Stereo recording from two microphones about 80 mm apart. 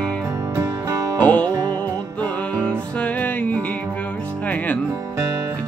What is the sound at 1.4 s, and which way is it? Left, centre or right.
Music, right.